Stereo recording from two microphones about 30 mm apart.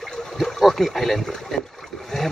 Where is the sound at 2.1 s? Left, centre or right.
Centre.